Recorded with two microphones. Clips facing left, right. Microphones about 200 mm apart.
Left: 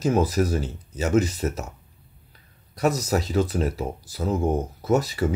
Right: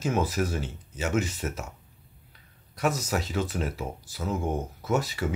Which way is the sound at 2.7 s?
35° left (ahead or behind).